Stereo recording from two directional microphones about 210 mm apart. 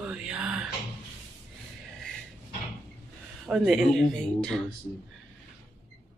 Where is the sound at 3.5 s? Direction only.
Centre (ahead or behind).